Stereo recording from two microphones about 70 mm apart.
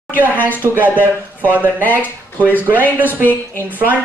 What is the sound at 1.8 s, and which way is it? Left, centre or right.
Speech, left.